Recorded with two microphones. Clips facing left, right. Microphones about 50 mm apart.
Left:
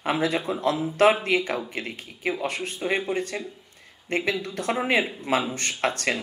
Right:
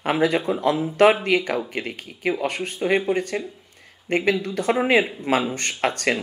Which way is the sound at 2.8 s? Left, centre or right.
Right.